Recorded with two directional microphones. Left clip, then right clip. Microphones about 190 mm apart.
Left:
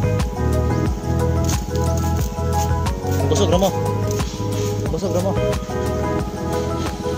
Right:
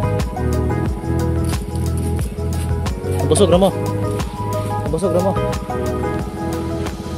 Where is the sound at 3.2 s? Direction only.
55° right (ahead or behind).